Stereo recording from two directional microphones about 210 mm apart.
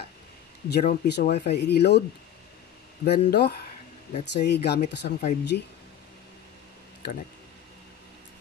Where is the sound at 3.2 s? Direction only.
50° left (ahead or behind).